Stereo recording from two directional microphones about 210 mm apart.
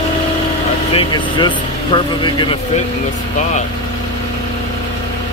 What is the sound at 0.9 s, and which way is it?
Speech, 20° left (ahead or behind).